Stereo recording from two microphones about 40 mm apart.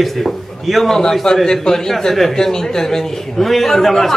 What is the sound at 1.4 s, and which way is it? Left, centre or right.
A man's voice, centre.